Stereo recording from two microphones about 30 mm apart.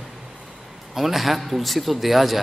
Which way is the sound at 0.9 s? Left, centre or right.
Centre.